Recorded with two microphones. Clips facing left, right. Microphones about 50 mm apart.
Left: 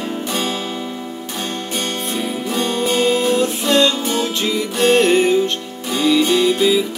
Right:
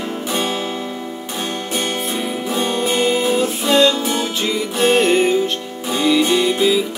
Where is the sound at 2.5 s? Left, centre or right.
Centre.